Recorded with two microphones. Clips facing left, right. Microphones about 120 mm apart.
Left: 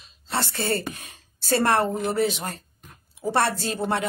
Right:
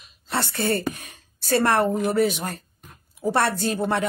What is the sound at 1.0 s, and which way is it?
Speech, 25° left (ahead or behind).